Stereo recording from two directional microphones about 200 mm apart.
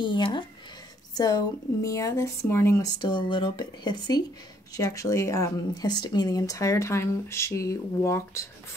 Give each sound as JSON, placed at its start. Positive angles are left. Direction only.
{"t": 0.0, "sound": "a woman's voice", "side_deg": 25}